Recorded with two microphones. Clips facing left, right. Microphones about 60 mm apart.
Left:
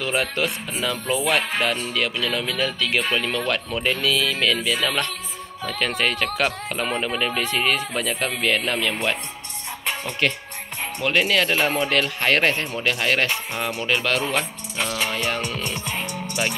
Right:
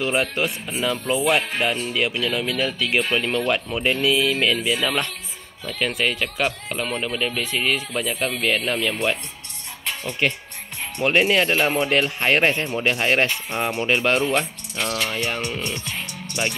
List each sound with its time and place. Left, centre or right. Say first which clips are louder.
0.0 s speech: right 1 dB; centre
3.3 s speech: right 2 dB; centre
7.5 s speech: left 1 dB; centre
10.2 s speech: even; centre
11.0 s speech: right 2 dB; right
11.5 s speech: right 1 dB; centre; by 14.2 s right
14.3 s speech: right 2 dB; centre
15.2 s speech: left 1 dB; centre
15.6 s music: left 1 dB; left
16.4 s speech: even; centre